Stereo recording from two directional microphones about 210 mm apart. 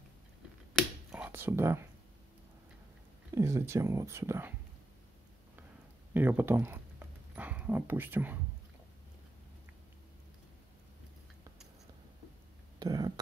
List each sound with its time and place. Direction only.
0.7 s finger snapping: 5° right (ahead or behind)
3.3 s speech: 15° right (ahead or behind)
6.1 s speech: 10° right (ahead or behind)
12.7 s speech: 20° right (ahead or behind)